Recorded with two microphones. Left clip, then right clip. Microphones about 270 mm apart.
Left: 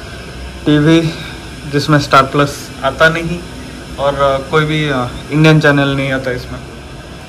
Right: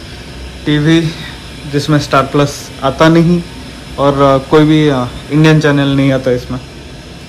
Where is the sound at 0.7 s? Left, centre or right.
Centre.